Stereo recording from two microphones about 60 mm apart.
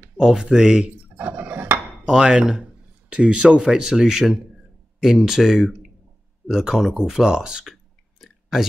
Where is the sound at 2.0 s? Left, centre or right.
Centre.